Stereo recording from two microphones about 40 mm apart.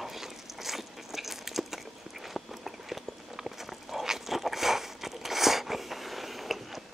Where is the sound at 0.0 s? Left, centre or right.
Centre.